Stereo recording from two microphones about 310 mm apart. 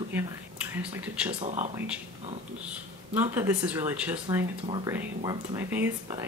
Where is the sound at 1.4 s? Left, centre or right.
Right.